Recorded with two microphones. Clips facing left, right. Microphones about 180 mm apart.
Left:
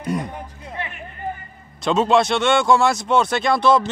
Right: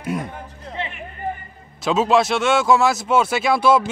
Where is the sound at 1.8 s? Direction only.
5° right (ahead or behind).